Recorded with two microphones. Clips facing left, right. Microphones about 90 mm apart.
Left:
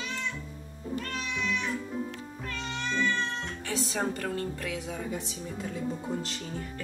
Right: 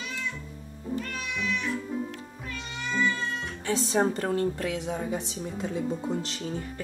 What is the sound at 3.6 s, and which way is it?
A woman's voice, 30° right (ahead or behind).